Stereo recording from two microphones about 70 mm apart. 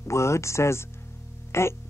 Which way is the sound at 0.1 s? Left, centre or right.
Left.